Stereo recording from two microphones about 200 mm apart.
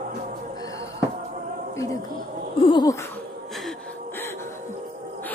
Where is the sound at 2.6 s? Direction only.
20° left (ahead or behind).